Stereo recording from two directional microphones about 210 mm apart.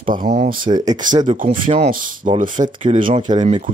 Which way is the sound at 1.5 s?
25° right (ahead or behind).